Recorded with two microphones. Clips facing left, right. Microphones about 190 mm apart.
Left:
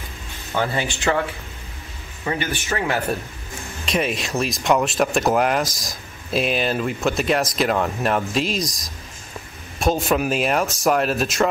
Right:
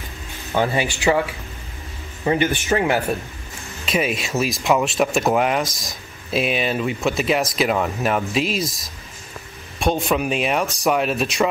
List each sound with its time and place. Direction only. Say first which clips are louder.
0.6 s speech: right 3 dB; 15° right (ahead or behind)
2.2 s speech: right 6 dB; 20° right (ahead or behind)
3.8 s speech: right 1 dB; 5° right (ahead or behind)